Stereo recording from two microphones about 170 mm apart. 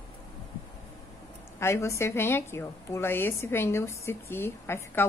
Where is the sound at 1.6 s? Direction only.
15° left (ahead or behind).